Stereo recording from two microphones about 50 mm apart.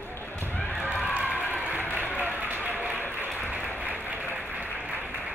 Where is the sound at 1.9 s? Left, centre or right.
Left.